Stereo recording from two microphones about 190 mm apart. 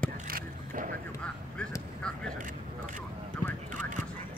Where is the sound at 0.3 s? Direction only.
50° right (ahead or behind).